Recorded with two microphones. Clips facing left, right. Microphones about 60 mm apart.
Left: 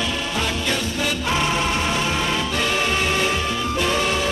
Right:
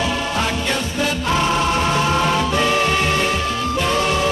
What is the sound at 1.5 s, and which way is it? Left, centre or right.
Music, centre.